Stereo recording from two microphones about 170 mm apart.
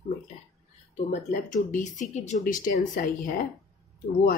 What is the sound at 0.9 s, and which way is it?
Speech, 50° left (ahead or behind).